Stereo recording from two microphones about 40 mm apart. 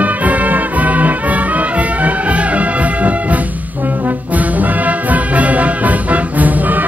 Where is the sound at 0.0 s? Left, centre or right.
Right.